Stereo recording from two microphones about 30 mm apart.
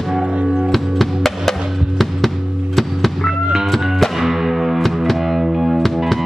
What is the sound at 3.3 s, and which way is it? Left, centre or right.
Music, centre.